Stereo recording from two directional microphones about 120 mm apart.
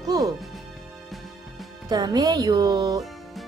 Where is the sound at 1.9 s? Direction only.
35° right (ahead or behind).